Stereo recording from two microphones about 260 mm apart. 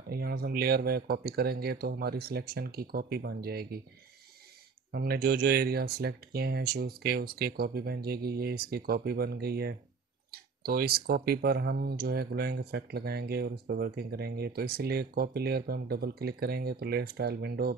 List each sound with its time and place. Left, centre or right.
0.1 s speech: right
4.9 s speech: right